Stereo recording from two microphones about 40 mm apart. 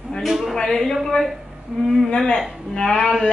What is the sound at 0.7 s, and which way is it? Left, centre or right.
Speech, centre.